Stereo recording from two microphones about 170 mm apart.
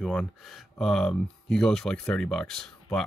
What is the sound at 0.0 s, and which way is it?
Speech, centre (ahead or behind).